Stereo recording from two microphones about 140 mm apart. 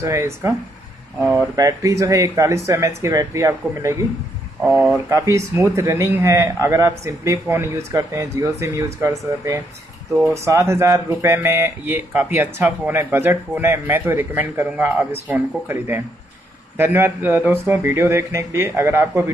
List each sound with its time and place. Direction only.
0.0 s speech: 20° right (ahead or behind)
1.6 s speech: 25° right (ahead or behind)